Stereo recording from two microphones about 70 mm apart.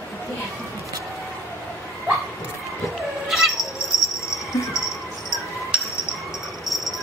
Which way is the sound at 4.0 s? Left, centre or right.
Centre.